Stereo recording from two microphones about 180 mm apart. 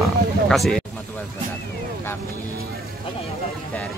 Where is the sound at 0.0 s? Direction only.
Centre (ahead or behind).